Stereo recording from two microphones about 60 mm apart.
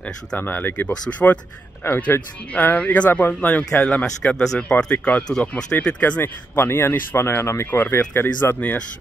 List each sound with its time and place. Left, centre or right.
0.4 s speech: left
1.9 s speech: left
8.5 s speech: left